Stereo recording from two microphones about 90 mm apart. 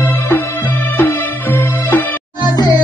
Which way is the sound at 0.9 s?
25° left (ahead or behind).